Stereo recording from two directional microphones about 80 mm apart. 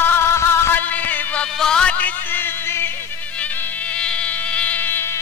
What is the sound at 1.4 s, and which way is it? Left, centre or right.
Music, centre.